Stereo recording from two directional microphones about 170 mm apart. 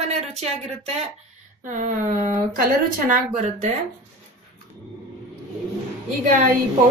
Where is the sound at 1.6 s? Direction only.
50° right (ahead or behind).